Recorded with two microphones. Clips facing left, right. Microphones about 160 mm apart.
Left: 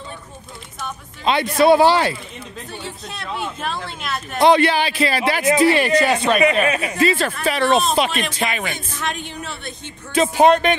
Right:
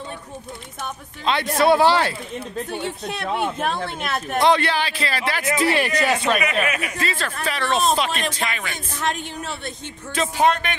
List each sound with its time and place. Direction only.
1.2 s speech: 5° left (ahead or behind)
2.7 s speech: 60° right (ahead or behind)
4.4 s speech: 10° left (ahead or behind)
5.9 s speech: 30° left (ahead or behind)
10.1 s speech: 15° left (ahead or behind)